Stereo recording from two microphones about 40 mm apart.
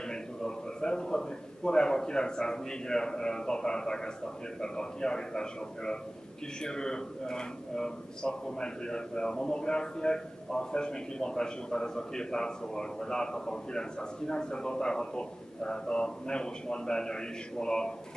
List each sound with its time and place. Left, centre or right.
0.1 s a man's voice: centre